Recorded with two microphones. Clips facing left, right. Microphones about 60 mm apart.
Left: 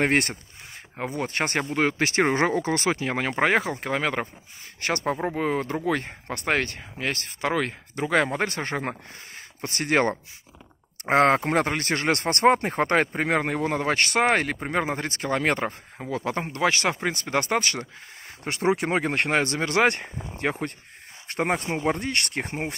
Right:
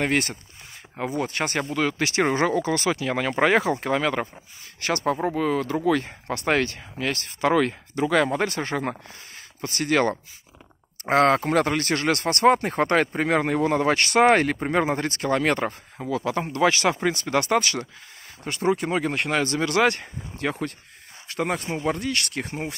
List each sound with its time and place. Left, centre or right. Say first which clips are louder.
0.0 s speech: left 1 dB; left
1.0 s speech: right 1 dB; centre
3.1 s speech: right 3 dB; centre
6.2 s speech: right 2 dB; centre
9.6 s speech: right 1 dB; left
12.9 s speech: right 1 dB; centre
18.5 s speech: even; left
19.2 s speech: even; left
21.3 s speech: left 1 dB; left